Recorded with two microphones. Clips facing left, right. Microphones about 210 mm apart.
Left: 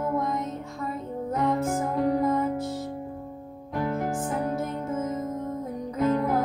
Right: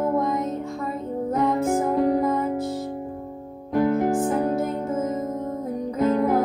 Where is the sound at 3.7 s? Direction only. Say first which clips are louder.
Right 8 dB; 40° right (ahead or behind).